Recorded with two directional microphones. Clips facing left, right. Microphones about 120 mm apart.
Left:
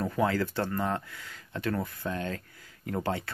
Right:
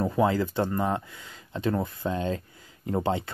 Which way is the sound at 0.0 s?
20° right (ahead or behind).